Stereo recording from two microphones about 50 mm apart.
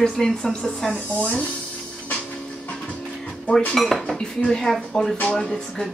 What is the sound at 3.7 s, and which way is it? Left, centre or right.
Speech, centre.